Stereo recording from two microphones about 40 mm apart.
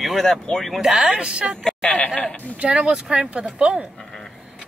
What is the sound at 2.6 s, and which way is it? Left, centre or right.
Speech, right.